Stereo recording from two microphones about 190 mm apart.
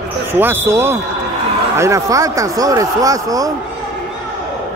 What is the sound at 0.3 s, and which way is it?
Speech, 10° right (ahead or behind).